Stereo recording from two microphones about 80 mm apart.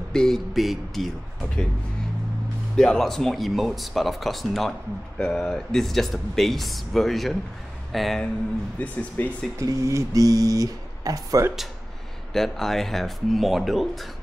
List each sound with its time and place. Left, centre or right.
0.1 s music: centre
2.7 s speech: centre
8.7 s speech: left
9.6 s speech: right
12.3 s speech: centre